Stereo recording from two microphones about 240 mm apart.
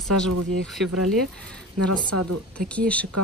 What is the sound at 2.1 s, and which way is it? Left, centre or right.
Speech, right.